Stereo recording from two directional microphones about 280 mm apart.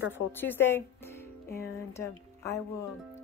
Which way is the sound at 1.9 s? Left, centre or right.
Centre.